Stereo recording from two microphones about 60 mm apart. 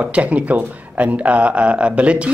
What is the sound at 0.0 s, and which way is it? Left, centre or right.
Speech, right.